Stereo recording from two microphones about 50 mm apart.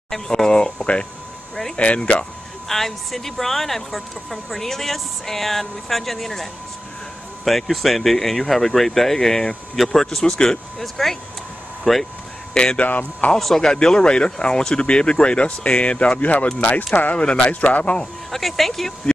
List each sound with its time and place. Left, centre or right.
0.1 s speech: centre
2.7 s speech: centre
12.5 s speech: centre
12.8 s speech: left
13.4 s speech: centre; by 18.0 s left
18.3 s speech: centre